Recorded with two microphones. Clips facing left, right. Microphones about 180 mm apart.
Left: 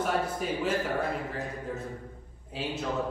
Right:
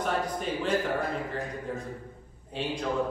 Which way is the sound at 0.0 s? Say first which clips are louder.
Even; 5° left (ahead or behind).